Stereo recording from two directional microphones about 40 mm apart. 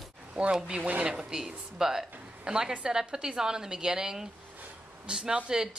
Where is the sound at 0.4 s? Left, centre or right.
Centre.